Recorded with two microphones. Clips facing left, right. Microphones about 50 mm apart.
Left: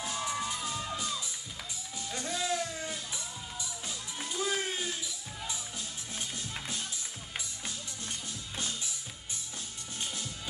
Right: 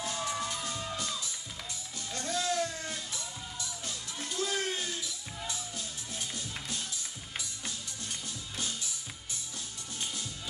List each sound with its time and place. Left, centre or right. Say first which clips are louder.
0.0 s music: even; centre
5.5 s music: even; left